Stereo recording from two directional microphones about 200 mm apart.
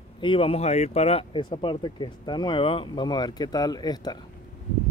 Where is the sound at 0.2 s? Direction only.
25° left (ahead or behind).